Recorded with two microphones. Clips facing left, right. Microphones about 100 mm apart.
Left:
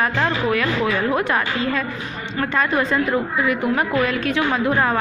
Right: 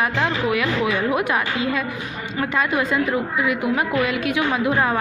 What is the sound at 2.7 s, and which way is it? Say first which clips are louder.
A woman's voice: left 1 dB; 5° right (ahead or behind).